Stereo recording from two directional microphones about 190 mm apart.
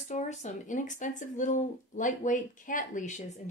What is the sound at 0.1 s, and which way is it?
Speech, 35° left (ahead or behind).